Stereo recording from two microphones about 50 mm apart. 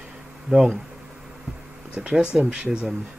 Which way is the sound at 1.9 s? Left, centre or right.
Right.